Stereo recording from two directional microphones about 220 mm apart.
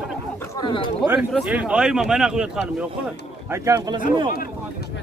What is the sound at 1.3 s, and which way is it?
Speech, 5° right (ahead or behind).